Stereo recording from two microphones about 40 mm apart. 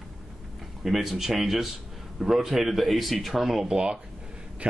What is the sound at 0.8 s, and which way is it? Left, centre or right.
Speech, centre.